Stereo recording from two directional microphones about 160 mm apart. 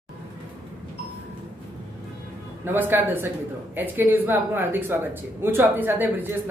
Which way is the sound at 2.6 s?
15° right (ahead or behind).